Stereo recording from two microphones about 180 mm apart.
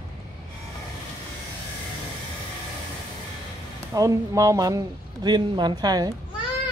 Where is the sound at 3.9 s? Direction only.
20° right (ahead or behind).